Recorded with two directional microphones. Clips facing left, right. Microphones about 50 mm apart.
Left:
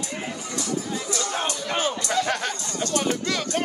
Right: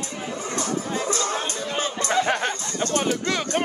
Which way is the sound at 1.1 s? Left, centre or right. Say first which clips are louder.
Right 3 dB; right.